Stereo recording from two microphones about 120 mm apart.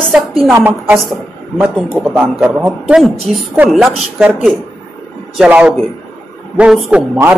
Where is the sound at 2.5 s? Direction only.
15° right (ahead or behind).